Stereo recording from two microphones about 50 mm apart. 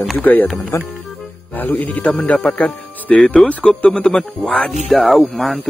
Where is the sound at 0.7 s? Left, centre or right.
Left.